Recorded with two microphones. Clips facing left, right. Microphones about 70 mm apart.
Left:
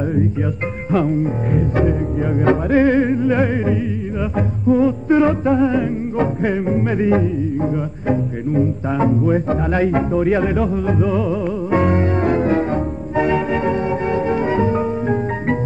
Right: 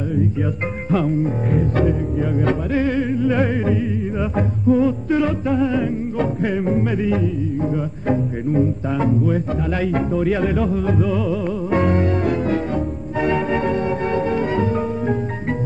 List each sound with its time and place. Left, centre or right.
0.9 s music: centre
2.4 s music: left
3.2 s music: centre
5.1 s music: left
7.0 s music: left
8.9 s music: left
9.9 s music: centre
13.1 s music: centre